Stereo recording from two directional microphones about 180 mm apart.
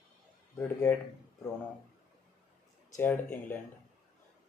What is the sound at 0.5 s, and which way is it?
Speech, 15° left (ahead or behind).